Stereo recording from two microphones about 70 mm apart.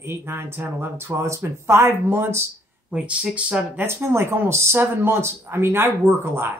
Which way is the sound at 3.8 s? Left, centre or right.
Right.